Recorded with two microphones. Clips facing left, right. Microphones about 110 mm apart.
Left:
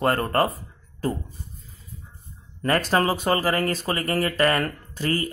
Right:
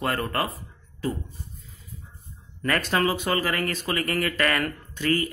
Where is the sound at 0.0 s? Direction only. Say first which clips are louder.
Left 5 dB; 40° left (ahead or behind).